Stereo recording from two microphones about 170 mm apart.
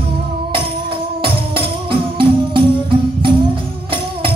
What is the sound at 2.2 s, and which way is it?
Music, 30° right (ahead or behind).